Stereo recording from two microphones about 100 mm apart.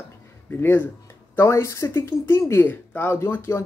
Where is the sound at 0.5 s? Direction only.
20° left (ahead or behind).